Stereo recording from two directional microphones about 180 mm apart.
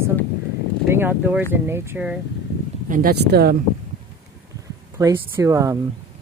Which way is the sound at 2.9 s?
55° right (ahead or behind).